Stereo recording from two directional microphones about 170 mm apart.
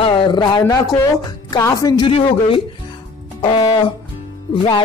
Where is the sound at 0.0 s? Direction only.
30° left (ahead or behind).